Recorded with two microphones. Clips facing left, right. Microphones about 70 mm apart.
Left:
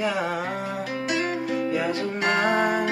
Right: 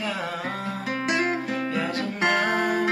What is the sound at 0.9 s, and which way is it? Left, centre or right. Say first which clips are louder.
Music: right 3 dB; right.